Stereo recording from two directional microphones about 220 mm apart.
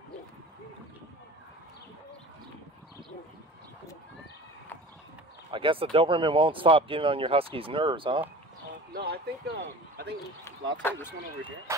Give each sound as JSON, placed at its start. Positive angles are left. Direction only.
{"t": 5.5, "sound": "speech", "side_deg": -25}
{"t": 8.9, "sound": "speech", "side_deg": -45}
{"t": 10.8, "sound": "speech", "side_deg": 10}